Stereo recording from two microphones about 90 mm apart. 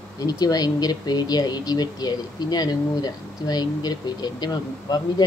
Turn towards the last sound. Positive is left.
turn(degrees=50)  # may be behind; listen again after turning